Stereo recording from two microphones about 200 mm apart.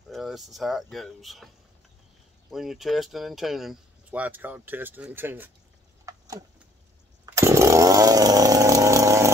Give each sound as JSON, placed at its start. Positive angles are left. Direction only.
{"t": 0.1, "sound": "speech", "side_deg": 0}
{"t": 2.5, "sound": "speech", "side_deg": 0}
{"t": 6.0, "sound": "a sound", "side_deg": -15}
{"t": 7.2, "sound": "chainsaw", "side_deg": -15}